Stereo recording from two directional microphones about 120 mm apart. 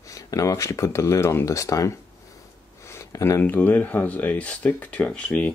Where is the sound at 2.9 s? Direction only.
25° left (ahead or behind).